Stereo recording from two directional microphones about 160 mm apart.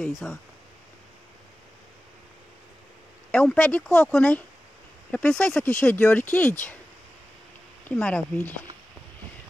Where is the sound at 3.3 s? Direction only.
10° left (ahead or behind).